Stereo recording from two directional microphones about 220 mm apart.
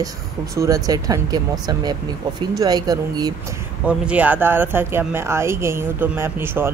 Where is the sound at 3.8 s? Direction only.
5° right (ahead or behind).